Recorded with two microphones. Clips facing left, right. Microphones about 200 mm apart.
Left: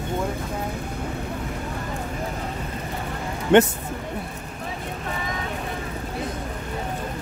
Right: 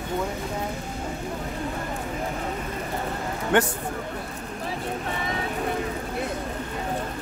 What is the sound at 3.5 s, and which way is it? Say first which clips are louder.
Speech: left 7 dB; 25° left (ahead or behind).